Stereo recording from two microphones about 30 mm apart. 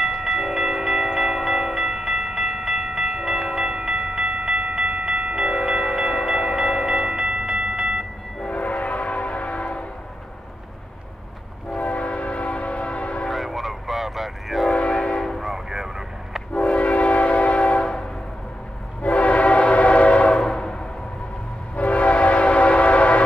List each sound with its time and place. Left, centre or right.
0.0 s train: centre
3.7 s train: right
5.4 s wind chime: centre
7.1 s a sound: centre
8.5 s train: left
11.7 s train: left
13.3 s train: centre
14.7 s train: left
15.4 s music: centre
16.5 s train: left
17.7 s train: left
19.0 s train: left
20.3 s train: left
21.7 s train: left